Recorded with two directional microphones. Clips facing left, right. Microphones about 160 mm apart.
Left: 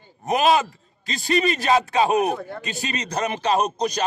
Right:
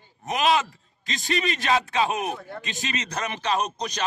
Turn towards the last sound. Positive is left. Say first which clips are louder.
# left 5 dB
turn(degrees=40)  # may be behind; listen again after turning